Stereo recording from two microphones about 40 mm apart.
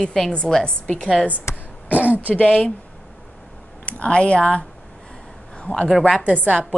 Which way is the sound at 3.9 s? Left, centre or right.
Left.